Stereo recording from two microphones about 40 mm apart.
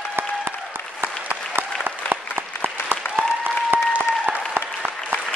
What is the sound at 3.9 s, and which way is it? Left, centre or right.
Applause, right.